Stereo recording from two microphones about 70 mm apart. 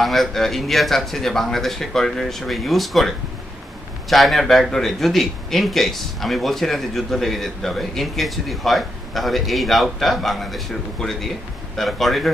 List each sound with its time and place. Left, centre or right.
0.0 s a man's voice: centre
4.1 s a man's voice: centre